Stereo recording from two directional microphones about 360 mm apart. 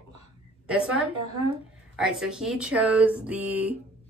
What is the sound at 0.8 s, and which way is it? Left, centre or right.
Speech, right.